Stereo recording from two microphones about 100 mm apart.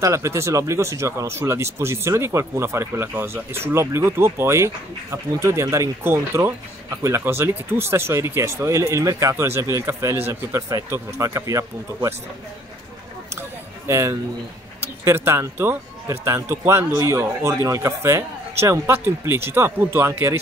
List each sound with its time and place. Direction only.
0.0 s speech: 30° right (ahead or behind)
13.3 s a sound: 30° right (ahead or behind)
15.0 s speech: 25° right (ahead or behind)